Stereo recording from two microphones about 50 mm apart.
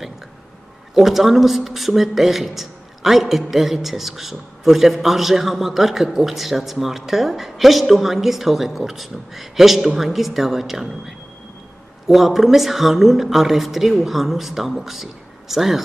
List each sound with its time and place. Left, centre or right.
0.9 s a man's voice: centre